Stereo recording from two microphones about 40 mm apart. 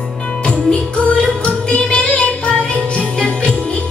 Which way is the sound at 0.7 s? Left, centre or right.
Left.